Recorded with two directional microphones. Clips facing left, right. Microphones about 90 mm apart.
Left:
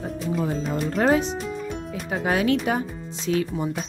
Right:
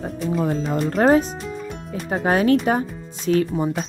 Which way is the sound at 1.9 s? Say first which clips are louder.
Right 5 dB; 40° right (ahead or behind).